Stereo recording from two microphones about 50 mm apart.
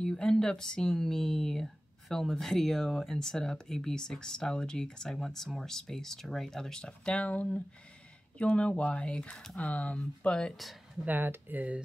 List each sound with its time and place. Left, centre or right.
0.0 s speech: centre
10.5 s speech: centre
11.1 s speech: right